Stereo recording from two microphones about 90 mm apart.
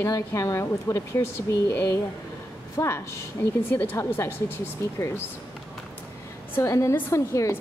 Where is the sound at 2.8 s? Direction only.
40° left (ahead or behind).